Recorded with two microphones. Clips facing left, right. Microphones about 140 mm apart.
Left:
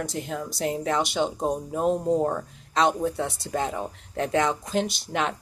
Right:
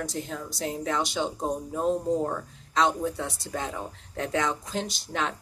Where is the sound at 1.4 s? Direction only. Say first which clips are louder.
Left 3 dB; 15° left (ahead or behind).